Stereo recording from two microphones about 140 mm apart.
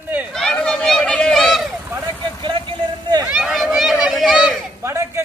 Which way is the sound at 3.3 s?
5° right (ahead or behind).